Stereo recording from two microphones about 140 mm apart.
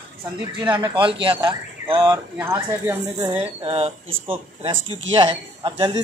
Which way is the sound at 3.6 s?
40° right (ahead or behind).